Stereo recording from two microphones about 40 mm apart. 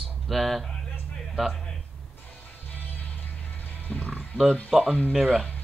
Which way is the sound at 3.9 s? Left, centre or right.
Left.